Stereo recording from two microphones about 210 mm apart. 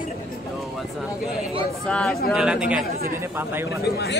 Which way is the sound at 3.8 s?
50° left (ahead or behind).